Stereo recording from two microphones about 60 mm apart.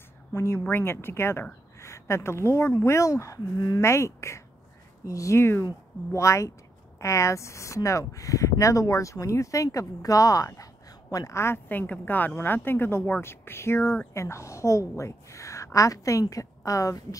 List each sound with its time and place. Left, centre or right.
0.3 s speech: left
0.7 s speech: left
3.1 s speech: left
3.8 s speech: left
5.0 s speech: left
5.4 s speech: left
6.1 s speech: left
11.3 s speech: left
11.7 s speech: left